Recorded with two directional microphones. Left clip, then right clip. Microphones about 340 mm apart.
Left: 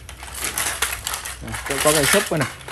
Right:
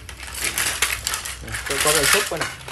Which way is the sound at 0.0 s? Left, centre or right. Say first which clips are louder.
Right 2 dB; centre.